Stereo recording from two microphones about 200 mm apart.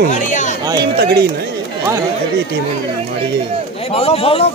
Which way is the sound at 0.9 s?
50° right (ahead or behind).